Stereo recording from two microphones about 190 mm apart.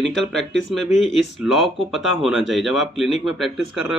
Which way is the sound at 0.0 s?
Centre (ahead or behind).